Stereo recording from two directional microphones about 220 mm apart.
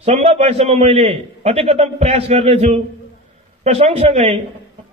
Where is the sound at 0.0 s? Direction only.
30° right (ahead or behind).